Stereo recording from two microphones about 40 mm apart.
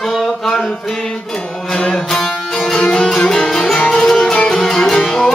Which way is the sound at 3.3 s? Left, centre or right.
Centre.